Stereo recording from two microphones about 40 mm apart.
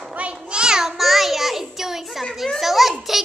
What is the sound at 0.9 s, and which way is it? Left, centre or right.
Child singing, centre.